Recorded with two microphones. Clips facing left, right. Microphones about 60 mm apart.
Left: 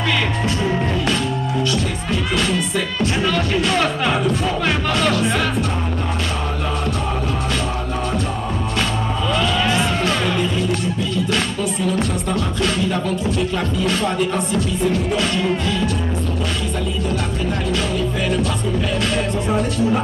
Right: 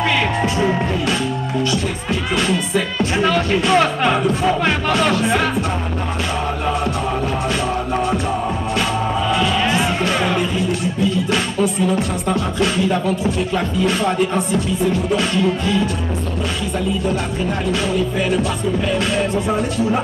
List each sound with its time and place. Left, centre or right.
2.3 s music: centre
3.2 s music: centre
9.3 s music: centre
12.3 s music: centre
18.9 s music: centre